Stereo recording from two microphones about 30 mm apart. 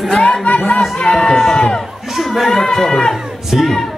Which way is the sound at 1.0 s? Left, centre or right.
Centre.